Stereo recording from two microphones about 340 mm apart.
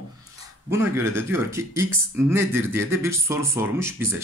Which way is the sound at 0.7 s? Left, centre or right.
Centre.